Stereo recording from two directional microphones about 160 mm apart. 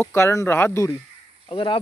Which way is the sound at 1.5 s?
30° left (ahead or behind).